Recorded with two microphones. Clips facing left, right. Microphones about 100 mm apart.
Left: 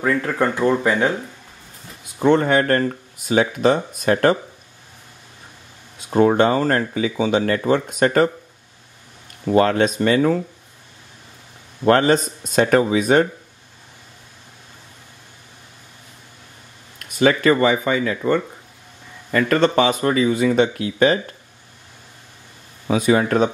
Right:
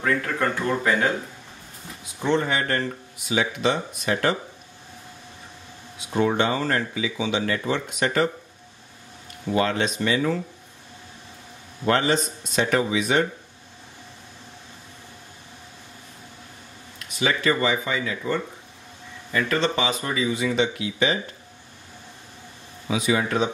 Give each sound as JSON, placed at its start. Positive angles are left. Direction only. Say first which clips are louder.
{"t": 0.0, "sound": "speech", "louder": "left 4 dB", "side_deg": 30}
{"t": 2.1, "sound": "speech", "louder": "left 7 dB", "side_deg": 50}
{"t": 5.9, "sound": "speech", "louder": "left 7 dB", "side_deg": 45}
{"t": 9.5, "sound": "speech", "louder": "left 7 dB", "side_deg": 50}
{"t": 11.8, "sound": "speech", "louder": "left 6 dB", "side_deg": 50}
{"t": 17.0, "sound": "speech", "louder": "left 7 dB", "side_deg": 50}
{"t": 22.8, "sound": "speech", "louder": "left 6 dB", "side_deg": 45}